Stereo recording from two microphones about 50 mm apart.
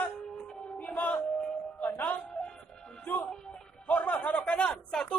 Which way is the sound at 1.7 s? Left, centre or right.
Left.